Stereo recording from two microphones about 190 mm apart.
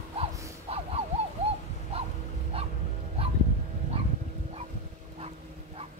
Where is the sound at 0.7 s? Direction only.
30° right (ahead or behind).